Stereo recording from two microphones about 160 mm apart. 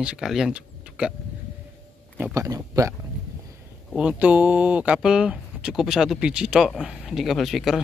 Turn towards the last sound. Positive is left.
turn(degrees=0)  # may be behind; listen again after turning